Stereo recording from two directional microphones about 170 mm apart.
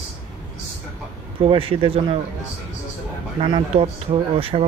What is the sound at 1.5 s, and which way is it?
Speech, 35° right (ahead or behind).